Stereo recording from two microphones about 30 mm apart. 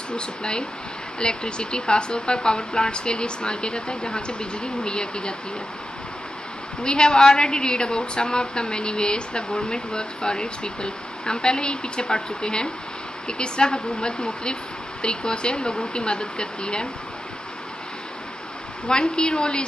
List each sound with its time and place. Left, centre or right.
0.1 s a woman's voice: left
6.8 s a woman's voice: left
18.9 s speech: left